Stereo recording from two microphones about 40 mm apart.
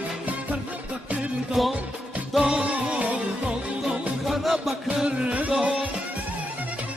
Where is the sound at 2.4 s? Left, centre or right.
Right.